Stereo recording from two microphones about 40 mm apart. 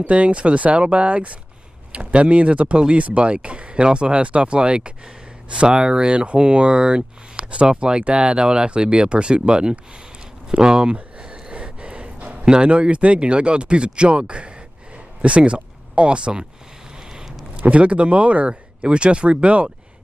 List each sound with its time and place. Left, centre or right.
0.0 s speech: right
10.5 s a sound: right
12.4 s speech: right
12.7 s speech: right
17.1 s a sound: centre
17.6 s speech: right